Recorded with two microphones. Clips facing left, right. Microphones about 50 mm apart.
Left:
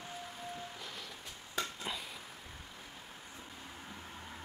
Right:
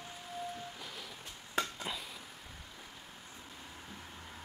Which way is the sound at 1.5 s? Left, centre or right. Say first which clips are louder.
Right 3 dB; centre.